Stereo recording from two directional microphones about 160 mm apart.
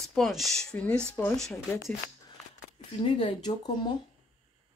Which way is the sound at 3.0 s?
30° left (ahead or behind).